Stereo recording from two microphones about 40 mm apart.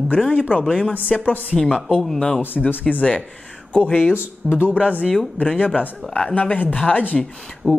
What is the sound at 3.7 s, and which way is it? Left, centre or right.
Speech, left.